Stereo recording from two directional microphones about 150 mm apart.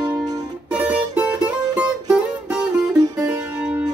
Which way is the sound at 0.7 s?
10° right (ahead or behind).